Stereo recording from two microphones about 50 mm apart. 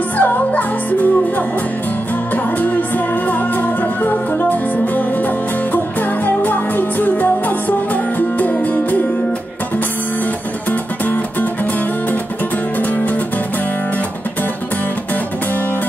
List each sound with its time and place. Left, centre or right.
0.2 s music: left
4.0 s music: left
6.2 s music: left